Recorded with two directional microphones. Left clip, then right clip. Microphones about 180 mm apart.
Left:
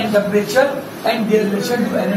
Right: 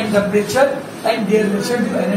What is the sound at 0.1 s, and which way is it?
Speech, 15° right (ahead or behind).